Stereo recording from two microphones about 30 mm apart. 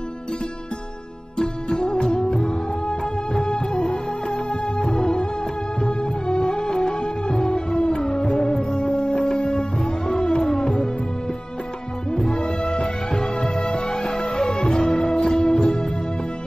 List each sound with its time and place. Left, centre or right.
1.7 s music: left
2.0 s music: centre
2.2 s music: left
7.4 s music: left
12.1 s music: left